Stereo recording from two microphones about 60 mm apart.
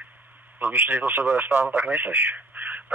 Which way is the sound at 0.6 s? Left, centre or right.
Right.